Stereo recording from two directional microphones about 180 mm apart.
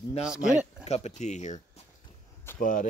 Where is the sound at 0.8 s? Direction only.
40° left (ahead or behind).